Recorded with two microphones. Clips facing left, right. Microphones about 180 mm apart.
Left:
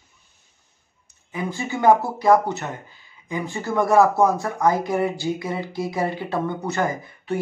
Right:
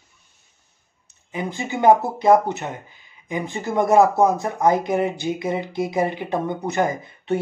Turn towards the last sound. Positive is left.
turn(degrees=-25)  # may be behind; listen again after turning